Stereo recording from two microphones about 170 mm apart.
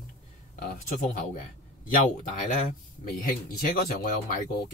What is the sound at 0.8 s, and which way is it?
Speech, 50° left (ahead or behind).